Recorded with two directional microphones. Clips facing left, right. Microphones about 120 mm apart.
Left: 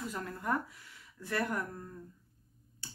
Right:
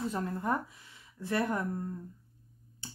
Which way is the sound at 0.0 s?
30° right (ahead or behind).